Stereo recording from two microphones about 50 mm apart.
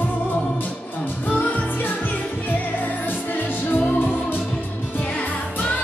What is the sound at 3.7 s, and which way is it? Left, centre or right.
Music, left.